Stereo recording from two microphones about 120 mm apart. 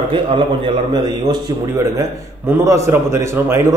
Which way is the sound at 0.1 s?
45° right (ahead or behind).